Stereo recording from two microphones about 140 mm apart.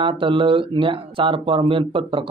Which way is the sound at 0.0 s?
35° right (ahead or behind).